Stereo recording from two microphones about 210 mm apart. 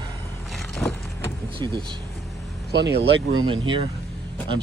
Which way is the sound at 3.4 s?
25° right (ahead or behind).